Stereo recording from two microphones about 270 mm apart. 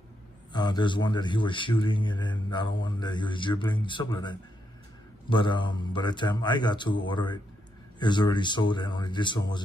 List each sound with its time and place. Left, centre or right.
0.5 s a man's voice: centre